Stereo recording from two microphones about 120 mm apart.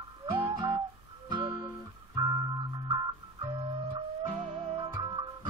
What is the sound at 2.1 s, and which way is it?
Music, 35° right (ahead or behind).